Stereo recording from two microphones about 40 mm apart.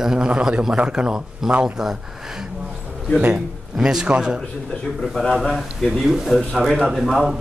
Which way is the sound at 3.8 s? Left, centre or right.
Centre.